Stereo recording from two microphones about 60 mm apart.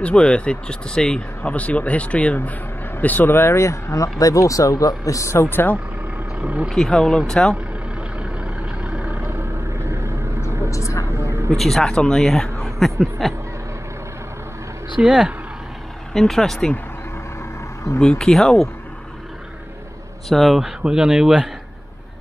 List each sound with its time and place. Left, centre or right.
0.0 s speech: centre
1.5 s speech: left
5.5 s speech: left
6.4 s speech: centre
6.7 s speech: centre
8.8 s vehicle: centre
9.1 s vehicle: right
10.7 s a sound: left
11.5 s speech: centre
15.0 s speech: centre
16.1 s speech: centre
18.0 s speech: centre
20.2 s speech: centre